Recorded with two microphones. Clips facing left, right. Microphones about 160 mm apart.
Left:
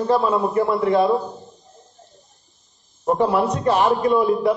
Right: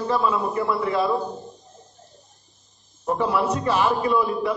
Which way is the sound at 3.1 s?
40° left (ahead or behind).